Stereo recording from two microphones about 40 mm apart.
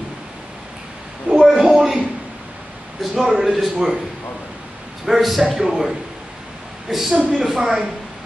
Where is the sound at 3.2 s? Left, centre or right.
Centre.